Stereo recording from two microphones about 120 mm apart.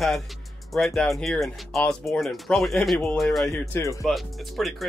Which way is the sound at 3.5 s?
20° left (ahead or behind).